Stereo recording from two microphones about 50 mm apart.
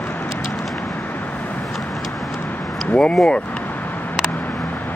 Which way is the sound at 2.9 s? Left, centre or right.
Centre.